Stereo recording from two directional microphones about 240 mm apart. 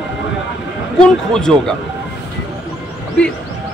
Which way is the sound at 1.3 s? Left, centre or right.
Centre.